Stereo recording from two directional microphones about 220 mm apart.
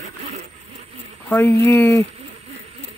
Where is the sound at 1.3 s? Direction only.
10° left (ahead or behind).